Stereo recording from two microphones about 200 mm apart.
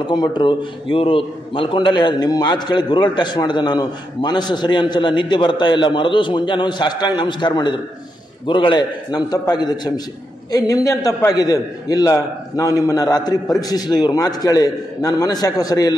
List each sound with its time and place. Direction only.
0.1 s a man's voice: 20° left (ahead or behind)